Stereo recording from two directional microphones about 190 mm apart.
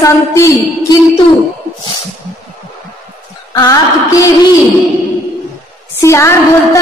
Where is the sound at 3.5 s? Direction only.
20° left (ahead or behind).